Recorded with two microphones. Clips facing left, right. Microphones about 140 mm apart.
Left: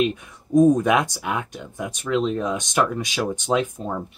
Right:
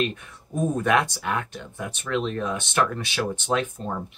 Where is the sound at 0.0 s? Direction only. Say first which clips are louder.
Left 4 dB; 15° left (ahead or behind).